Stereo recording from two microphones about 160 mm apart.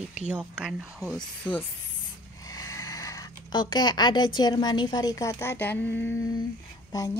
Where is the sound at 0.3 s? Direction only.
5° right (ahead or behind); by 1.7 s 10° left (ahead or behind).